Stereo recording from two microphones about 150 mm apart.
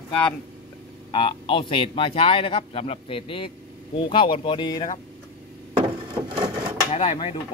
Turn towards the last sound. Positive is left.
turn(degrees=40)  # may be behind; listen again after turning